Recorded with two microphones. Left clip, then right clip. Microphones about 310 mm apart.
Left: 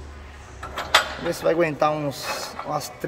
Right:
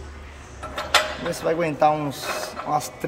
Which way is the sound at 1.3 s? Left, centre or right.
Centre.